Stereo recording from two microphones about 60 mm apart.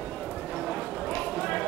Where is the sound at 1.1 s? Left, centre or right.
Centre.